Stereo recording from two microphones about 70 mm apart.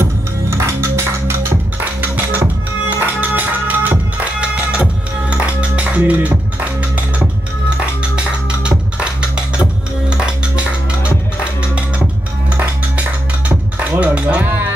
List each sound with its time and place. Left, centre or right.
0.0 s music: right; by 11.1 s centre
13.5 s music: right